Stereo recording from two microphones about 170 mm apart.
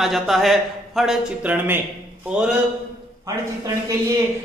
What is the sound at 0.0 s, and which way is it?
Speech, centre (ahead or behind).